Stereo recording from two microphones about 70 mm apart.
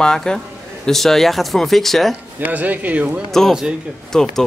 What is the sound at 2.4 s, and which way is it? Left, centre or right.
Speech, right.